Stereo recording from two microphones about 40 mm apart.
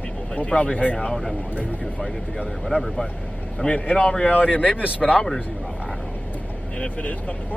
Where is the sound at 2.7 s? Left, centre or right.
Centre.